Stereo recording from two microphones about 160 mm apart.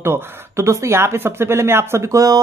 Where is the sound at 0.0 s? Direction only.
15° right (ahead or behind).